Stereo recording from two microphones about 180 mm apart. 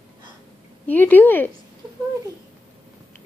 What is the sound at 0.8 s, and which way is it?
Speech, 10° left (ahead or behind).